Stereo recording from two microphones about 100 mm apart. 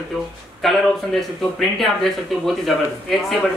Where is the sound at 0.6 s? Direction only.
5° left (ahead or behind).